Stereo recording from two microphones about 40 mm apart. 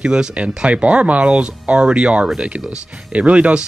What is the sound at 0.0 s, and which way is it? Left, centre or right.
Speech, right.